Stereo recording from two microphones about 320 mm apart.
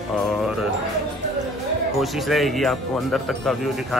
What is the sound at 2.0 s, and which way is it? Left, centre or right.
Speech, centre.